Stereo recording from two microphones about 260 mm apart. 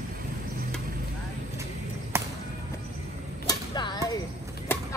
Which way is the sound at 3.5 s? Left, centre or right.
Centre.